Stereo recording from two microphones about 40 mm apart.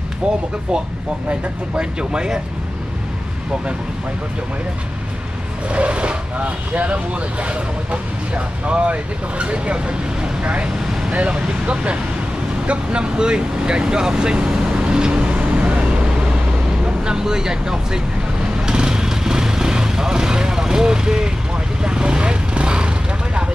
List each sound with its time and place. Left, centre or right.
1.8 s speech: right
5.7 s speech: right
12.6 s vehicle: right
16.8 s speech: centre
18.6 s vehicle: centre